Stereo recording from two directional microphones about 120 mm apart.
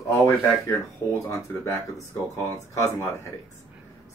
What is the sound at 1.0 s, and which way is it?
Speech, 25° left (ahead or behind).